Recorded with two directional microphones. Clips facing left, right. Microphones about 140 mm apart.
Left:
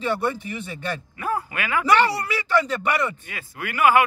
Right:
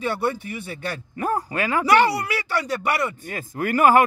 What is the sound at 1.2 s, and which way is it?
Speech, 40° right (ahead or behind).